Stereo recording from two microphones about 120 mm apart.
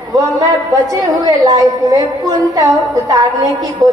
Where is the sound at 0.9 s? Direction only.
30° right (ahead or behind).